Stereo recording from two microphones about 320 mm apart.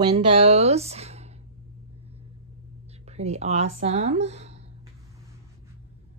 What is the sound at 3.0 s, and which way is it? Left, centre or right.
Speech, centre.